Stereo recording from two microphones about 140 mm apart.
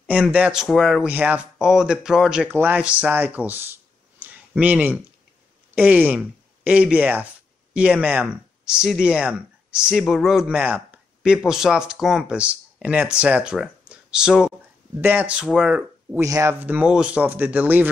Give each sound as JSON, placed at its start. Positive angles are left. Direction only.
{"t": 0.1, "sound": "speech", "side_deg": -10}
{"t": 1.0, "sound": "speech", "side_deg": -10}
{"t": 16.2, "sound": "speech", "side_deg": -20}
{"t": 16.6, "sound": "speech", "side_deg": -10}